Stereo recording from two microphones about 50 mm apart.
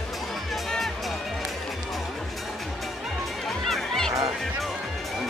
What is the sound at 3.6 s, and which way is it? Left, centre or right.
Music, centre.